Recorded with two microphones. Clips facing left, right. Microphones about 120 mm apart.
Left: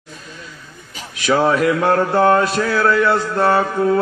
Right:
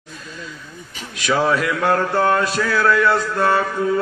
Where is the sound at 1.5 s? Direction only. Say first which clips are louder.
Left 4 dB; 50° left (ahead or behind).